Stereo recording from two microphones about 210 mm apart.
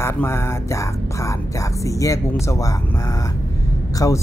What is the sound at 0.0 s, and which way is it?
Speech, 10° left (ahead or behind).